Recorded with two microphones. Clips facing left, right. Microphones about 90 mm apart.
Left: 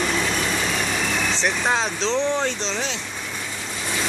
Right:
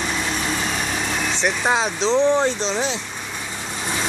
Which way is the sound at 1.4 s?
10° right (ahead or behind).